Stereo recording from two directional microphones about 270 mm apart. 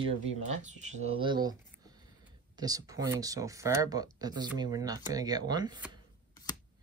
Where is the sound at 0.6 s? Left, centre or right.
Right.